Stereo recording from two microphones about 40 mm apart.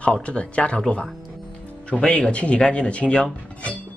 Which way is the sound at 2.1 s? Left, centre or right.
Left.